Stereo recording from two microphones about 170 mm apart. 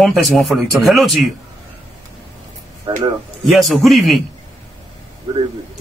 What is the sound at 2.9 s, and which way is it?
Speech, 30° right (ahead or behind).